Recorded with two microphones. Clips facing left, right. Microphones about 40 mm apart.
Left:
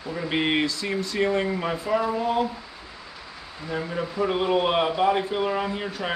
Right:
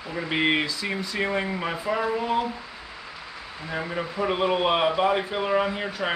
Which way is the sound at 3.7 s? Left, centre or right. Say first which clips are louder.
Left 1 dB; centre.